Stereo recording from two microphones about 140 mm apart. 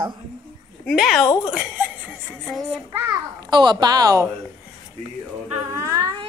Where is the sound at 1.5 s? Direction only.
10° right (ahead or behind).